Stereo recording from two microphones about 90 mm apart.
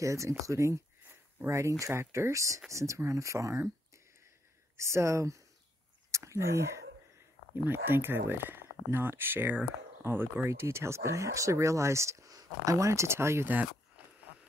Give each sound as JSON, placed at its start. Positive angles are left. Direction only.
{"t": 0.0, "sound": "speech", "side_deg": -35}